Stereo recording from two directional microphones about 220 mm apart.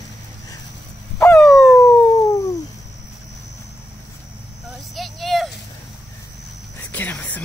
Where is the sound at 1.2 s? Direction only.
5° left (ahead or behind).